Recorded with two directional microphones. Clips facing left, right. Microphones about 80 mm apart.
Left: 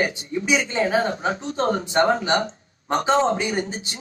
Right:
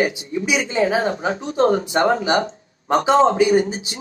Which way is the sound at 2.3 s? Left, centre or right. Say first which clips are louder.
Right 3 dB; right.